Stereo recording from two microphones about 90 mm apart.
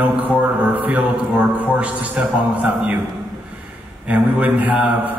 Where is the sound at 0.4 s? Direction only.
20° right (ahead or behind).